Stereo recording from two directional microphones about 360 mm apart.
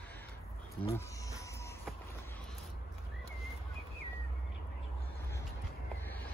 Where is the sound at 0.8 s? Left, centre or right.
Centre.